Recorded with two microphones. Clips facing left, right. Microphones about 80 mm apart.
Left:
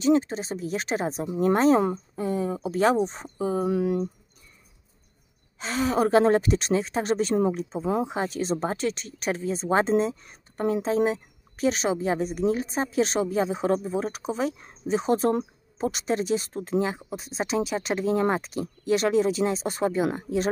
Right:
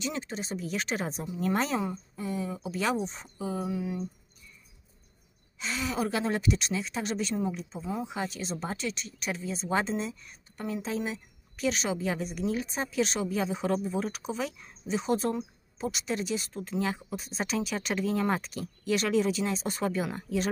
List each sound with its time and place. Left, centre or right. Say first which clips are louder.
0.0 s speech: left 13 dB; left
3.6 s speech: left 9 dB; left
5.6 s speech: left 7 dB; left
8.1 s speech: left 7 dB; left